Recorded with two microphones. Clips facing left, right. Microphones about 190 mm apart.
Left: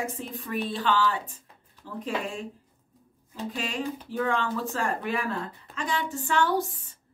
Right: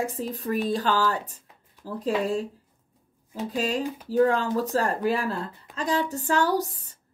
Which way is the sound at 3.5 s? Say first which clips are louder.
Right 5 dB; 40° right (ahead or behind).